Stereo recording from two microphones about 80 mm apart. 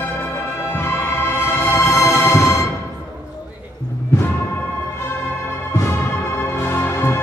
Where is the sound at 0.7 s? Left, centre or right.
Left.